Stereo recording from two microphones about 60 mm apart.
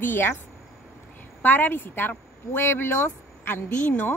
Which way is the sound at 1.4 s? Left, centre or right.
Left.